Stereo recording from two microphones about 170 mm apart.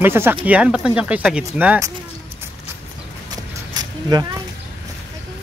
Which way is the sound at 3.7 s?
20° right (ahead or behind).